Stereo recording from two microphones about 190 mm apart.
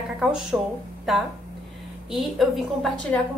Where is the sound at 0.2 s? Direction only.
5° right (ahead or behind).